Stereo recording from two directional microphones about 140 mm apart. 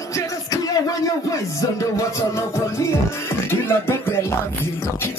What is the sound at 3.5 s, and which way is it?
Speech, 15° left (ahead or behind).